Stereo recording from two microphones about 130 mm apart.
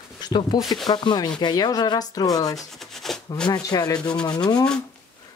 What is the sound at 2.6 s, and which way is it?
Speech, centre (ahead or behind).